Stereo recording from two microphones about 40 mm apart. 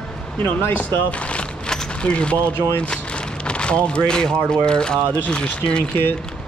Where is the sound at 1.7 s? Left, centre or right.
Left.